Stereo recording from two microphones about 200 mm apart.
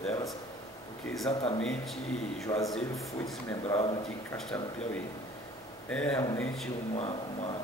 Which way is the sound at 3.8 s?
20° left (ahead or behind).